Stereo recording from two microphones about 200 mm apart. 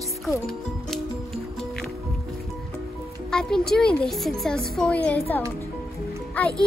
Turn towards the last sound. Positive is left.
turn(degrees=5)  # may be behind; listen again after turning